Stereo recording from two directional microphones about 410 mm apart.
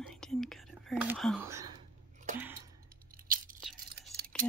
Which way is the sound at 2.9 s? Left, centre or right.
Right.